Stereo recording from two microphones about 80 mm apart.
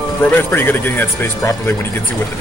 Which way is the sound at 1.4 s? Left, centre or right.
Left.